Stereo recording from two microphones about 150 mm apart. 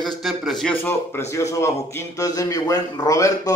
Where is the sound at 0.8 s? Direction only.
15° left (ahead or behind).